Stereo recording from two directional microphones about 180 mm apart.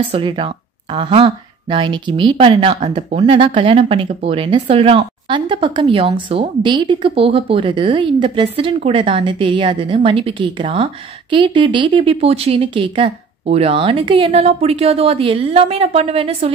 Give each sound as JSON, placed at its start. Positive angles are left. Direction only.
{"t": 0.0, "sound": "a woman's voice", "side_deg": -30}